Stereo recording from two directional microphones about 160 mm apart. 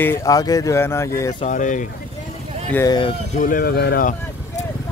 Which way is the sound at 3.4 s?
60° left (ahead or behind).